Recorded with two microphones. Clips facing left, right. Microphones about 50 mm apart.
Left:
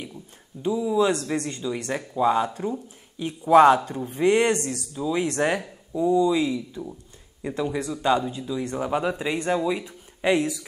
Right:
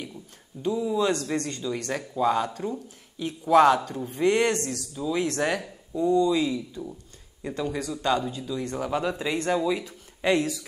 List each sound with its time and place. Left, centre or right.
0.5 s speech: centre
0.9 s speech: centre